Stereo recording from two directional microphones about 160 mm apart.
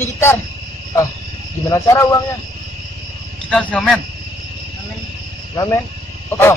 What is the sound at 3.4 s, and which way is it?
Speech, 5° left (ahead or behind).